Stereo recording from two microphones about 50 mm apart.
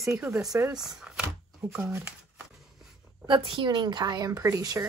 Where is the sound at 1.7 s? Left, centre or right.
Right.